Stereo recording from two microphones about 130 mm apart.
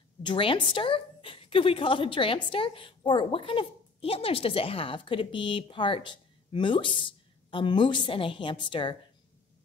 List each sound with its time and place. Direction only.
0.2 s a woman's voice: 40° left (ahead or behind)